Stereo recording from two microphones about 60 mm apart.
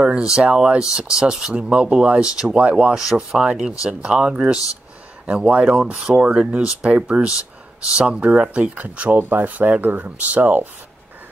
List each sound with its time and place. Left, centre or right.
0.0 s speech: centre